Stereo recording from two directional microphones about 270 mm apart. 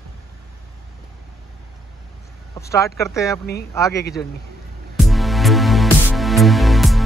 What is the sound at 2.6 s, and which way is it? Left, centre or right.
Speech, centre.